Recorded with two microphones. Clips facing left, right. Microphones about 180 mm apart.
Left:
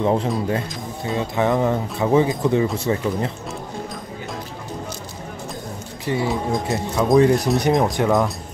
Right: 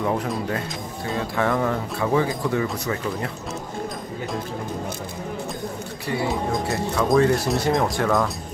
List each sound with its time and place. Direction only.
0.0 s speech: 25° left (ahead or behind)
6.5 s speech: 20° left (ahead or behind)